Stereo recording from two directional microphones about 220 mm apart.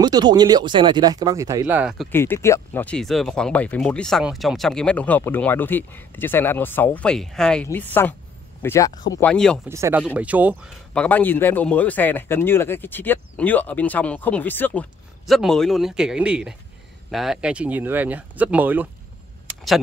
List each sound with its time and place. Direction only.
0.0 s speech: 20° right (ahead or behind)
2.0 s speech: 10° left (ahead or behind)
9.7 s speech: 10° right (ahead or behind)
10.9 s speech: 5° left (ahead or behind)